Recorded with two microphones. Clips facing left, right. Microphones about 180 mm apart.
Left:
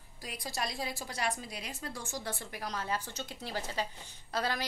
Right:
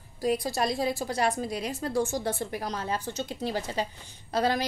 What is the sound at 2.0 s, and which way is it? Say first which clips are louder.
A woman's voice: right 10 dB; 25° right (ahead or behind).